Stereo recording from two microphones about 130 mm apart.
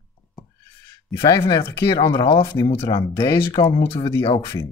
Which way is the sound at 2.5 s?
20° left (ahead or behind).